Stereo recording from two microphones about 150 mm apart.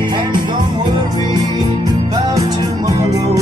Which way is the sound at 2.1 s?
25° right (ahead or behind).